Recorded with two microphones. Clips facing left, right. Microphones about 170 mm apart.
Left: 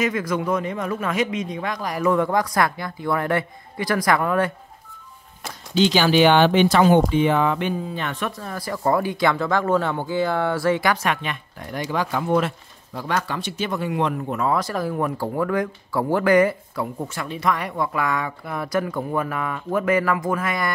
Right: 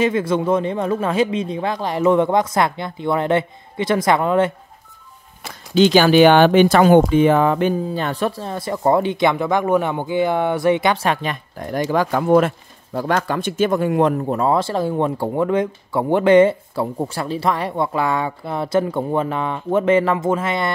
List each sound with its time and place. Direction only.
0.0 s speech: 30° right (ahead or behind)
5.8 s speech: 50° right (ahead or behind); by 20.7 s 25° right (ahead or behind)